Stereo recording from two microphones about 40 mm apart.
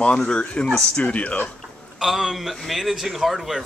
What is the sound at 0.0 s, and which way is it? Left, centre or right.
Speech, left.